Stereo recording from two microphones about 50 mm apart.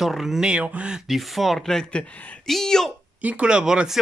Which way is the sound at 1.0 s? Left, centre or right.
Centre.